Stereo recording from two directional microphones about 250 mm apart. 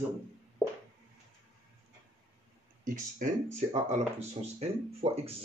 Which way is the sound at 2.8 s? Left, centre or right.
Right.